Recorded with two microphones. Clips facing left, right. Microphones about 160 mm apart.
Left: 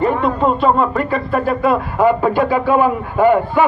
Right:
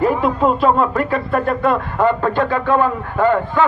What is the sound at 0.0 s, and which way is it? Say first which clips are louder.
A man's voice: even; centre (ahead or behind).